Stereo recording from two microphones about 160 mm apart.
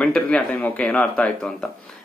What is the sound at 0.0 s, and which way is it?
Speech, 5° left (ahead or behind).